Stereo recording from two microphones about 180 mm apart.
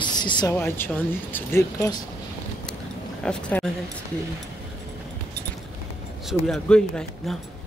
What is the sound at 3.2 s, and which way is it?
Speech, 5° left (ahead or behind).